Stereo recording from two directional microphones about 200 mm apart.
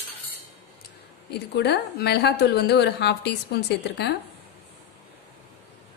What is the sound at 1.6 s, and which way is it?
A woman's voice, 55° left (ahead or behind).